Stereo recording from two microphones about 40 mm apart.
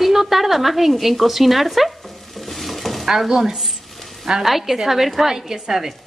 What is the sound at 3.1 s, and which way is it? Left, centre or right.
A woman's voice, centre.